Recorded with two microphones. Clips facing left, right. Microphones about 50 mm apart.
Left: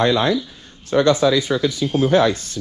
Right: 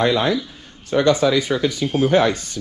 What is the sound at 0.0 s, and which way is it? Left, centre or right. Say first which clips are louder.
Speech: left 1 dB; left.